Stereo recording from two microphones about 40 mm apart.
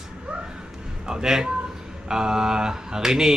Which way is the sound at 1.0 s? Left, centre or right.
Centre.